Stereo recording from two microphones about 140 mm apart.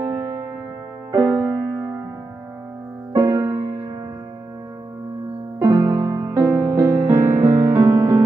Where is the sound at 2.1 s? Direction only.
20° right (ahead or behind).